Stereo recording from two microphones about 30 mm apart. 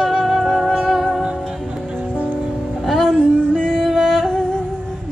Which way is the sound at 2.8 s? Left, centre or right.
Centre.